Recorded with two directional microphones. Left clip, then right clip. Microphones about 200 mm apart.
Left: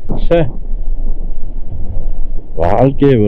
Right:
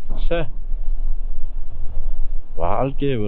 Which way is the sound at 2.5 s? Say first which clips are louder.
Left 10 dB; 30° right (ahead or behind).